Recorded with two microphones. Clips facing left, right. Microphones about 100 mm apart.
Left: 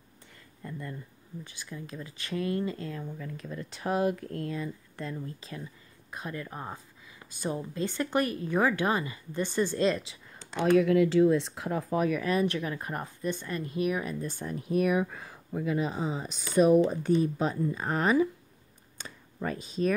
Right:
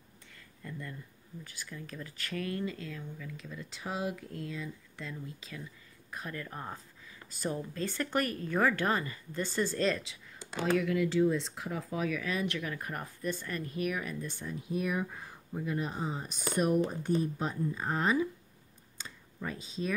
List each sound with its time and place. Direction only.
0.6 s a sound: 25° left (ahead or behind)
1.4 s speech: 20° left (ahead or behind)
6.0 s a woman's voice: 20° left (ahead or behind)
10.6 s speech: 55° left (ahead or behind); by 14.1 s 25° left (ahead or behind)
14.2 s speech: 45° left (ahead or behind)
14.6 s speech: 65° left (ahead or behind); by 15.8 s 90° left
16.8 s speech: 90° left; by 18.3 s 70° left (ahead or behind)
18.9 s a sound: 60° left (ahead or behind)